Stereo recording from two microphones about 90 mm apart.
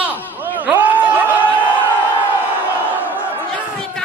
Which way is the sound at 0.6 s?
20° right (ahead or behind).